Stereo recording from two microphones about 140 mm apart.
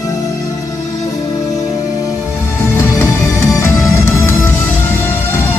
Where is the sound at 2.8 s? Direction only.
15° left (ahead or behind).